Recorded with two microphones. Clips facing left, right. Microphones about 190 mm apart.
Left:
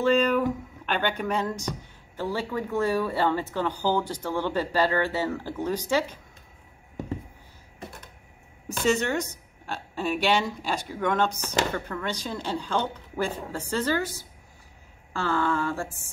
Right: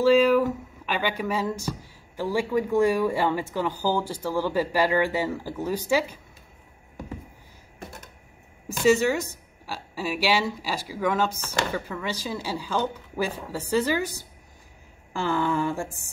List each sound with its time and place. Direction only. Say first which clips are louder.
0.0 s speech: right 4 dB; 5° right (ahead or behind)
8.8 s speech: right 4 dB; 5° right (ahead or behind)